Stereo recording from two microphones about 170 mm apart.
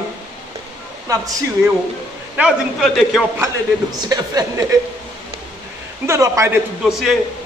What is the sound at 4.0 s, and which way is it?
Speech, 20° right (ahead or behind).